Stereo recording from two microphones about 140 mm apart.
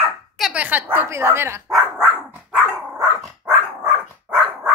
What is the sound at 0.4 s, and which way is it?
Speech, 10° right (ahead or behind).